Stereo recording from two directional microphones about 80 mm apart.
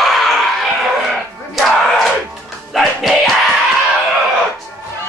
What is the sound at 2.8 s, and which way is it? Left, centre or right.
Music, centre.